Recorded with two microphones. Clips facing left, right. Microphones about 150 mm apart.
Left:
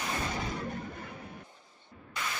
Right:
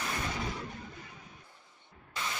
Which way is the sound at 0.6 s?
55° left (ahead or behind).